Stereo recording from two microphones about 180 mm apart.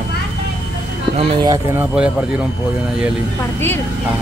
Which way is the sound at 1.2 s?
20° right (ahead or behind).